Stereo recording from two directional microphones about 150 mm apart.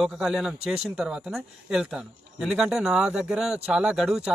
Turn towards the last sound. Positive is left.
turn(degrees=-5)  # may be behind; listen again after turning